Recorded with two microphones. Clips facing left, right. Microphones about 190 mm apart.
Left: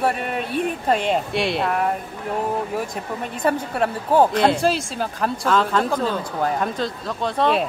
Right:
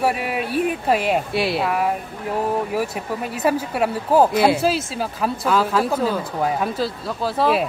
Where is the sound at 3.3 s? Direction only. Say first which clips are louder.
Right 1 dB; 5° right (ahead or behind).